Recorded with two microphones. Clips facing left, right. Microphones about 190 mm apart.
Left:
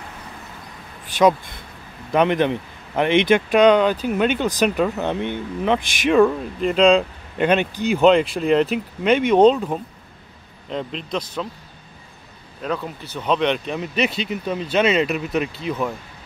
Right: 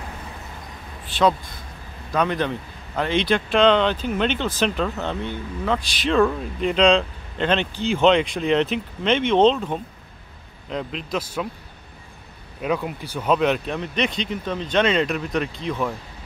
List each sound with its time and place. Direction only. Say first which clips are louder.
2.1 s speech: left 5 dB; 20° left (ahead or behind); by 11.4 s 10° right (ahead or behind)
12.6 s speech: right 2 dB; 10° right (ahead or behind)